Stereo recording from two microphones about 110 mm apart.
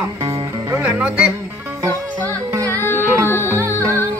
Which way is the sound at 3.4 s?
25° right (ahead or behind).